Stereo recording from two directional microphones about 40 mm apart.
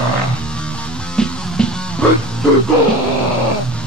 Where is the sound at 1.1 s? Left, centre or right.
Centre.